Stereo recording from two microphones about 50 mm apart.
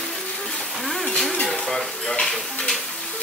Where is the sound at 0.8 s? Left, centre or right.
Centre.